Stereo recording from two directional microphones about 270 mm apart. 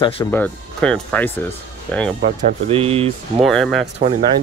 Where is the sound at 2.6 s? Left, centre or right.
Right.